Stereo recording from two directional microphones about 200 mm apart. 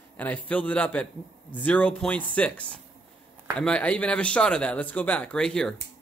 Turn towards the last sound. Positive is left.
turn(degrees=5)  # may be behind; listen again after turning